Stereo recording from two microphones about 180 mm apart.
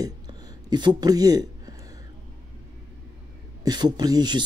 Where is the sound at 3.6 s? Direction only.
25° right (ahead or behind).